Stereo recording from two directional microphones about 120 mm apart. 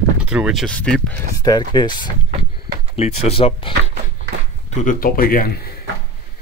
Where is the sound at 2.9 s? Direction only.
55° left (ahead or behind).